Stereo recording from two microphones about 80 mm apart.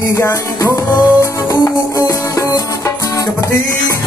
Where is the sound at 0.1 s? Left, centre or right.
Left.